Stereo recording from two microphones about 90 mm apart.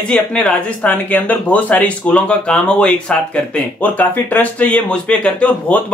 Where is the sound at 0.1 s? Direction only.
10° left (ahead or behind).